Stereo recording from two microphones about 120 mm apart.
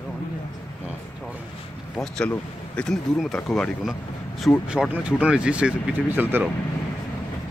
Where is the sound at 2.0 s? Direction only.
5° left (ahead or behind); by 6.4 s 15° right (ahead or behind).